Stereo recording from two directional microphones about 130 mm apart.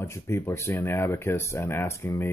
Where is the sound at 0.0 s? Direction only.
20° left (ahead or behind).